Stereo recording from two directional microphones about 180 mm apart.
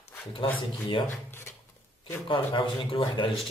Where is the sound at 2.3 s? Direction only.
30° left (ahead or behind).